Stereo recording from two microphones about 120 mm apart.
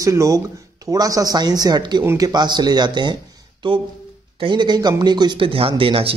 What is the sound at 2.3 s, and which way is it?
Speech, 35° right (ahead or behind).